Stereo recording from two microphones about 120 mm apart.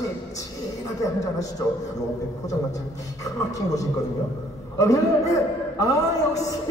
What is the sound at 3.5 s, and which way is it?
Speech, 25° left (ahead or behind).